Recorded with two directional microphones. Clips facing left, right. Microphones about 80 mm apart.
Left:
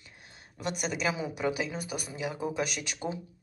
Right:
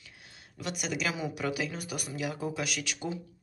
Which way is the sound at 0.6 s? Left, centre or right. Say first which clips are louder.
Left 2 dB; left.